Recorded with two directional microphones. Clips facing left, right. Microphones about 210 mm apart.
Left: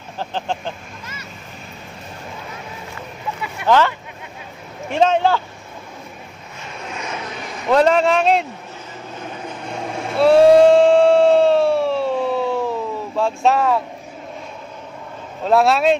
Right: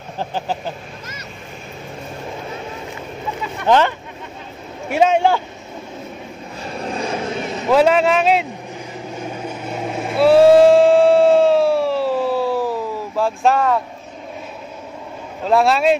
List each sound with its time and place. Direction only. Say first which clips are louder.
0.2 s speech: right 1 dB; 10° right (ahead or behind)
3.6 s speech: right 1 dB; 20° right (ahead or behind)
6.6 s vehicle: right 7 dB; 35° right (ahead or behind)
7.7 s a man's voice: right 1 dB; 5° right (ahead or behind)
9.5 s vehicle: even; 5° right (ahead or behind)
10.1 s a sound: right 1 dB; centre (ahead or behind)
15.4 s a man's voice: even; centre (ahead or behind)